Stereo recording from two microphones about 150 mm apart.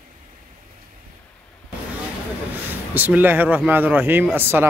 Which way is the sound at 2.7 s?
10° right (ahead or behind).